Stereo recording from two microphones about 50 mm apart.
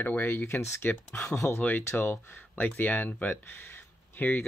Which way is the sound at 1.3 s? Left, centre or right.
Left.